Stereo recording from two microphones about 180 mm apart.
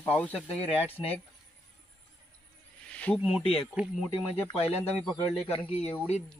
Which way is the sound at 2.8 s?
5° left (ahead or behind).